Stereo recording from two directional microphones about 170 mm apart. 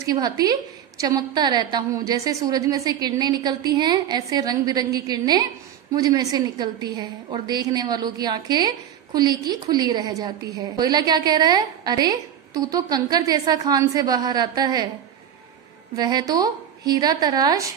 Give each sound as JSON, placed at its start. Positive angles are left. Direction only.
{"t": 0.0, "sound": "a woman's voice", "side_deg": -20}
{"t": 16.0, "sound": "a woman's voice", "side_deg": -25}